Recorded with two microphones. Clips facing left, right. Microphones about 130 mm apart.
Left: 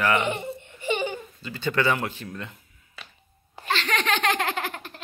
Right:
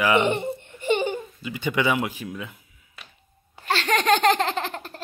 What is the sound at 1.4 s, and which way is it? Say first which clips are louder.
Speech: left 2 dB; 15° right (ahead or behind).